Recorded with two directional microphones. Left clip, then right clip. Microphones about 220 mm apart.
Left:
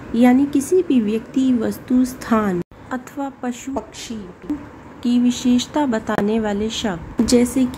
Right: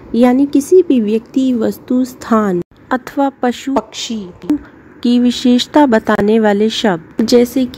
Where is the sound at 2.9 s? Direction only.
30° right (ahead or behind).